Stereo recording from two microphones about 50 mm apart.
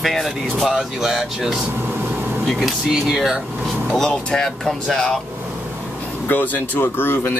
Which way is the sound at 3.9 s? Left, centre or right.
Centre.